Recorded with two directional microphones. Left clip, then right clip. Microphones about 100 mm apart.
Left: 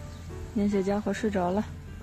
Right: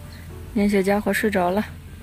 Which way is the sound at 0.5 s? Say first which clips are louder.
Right 8 dB; 40° right (ahead or behind).